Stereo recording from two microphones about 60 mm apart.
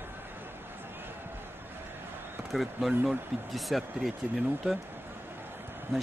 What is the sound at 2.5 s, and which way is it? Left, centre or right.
Speech, centre.